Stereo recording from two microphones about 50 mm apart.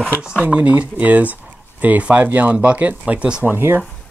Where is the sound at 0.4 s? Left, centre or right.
Right.